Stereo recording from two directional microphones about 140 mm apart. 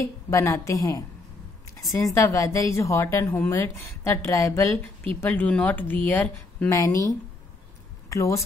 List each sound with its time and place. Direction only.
0.3 s a woman's voice: 20° left (ahead or behind)
1.8 s a woman's voice: centre (ahead or behind)
2.1 s a woman's voice: 20° left (ahead or behind)
6.7 s a woman's voice: 25° left (ahead or behind)